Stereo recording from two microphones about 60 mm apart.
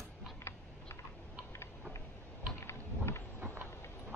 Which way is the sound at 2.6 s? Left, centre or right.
Left.